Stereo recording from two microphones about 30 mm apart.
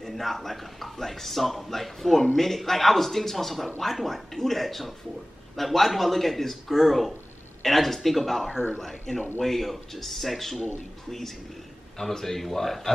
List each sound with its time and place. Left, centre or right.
0.1 s a man's voice: centre
8.5 s speech: left
9.1 s a man's voice: centre